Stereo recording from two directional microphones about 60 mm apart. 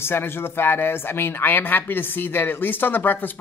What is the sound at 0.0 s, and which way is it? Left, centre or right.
Speech, left.